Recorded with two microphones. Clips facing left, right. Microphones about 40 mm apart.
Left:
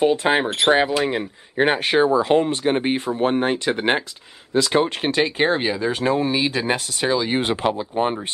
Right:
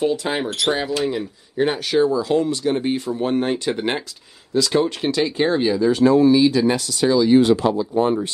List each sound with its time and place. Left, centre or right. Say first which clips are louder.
0.0 s speech: left 3 dB; left
3.3 s speech: even; left